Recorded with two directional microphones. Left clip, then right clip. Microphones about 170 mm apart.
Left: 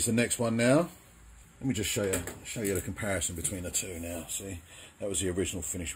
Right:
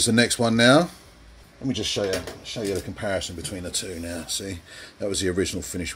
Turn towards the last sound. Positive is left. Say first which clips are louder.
# right 7 dB
turn(degrees=-10)  # may be behind; listen again after turning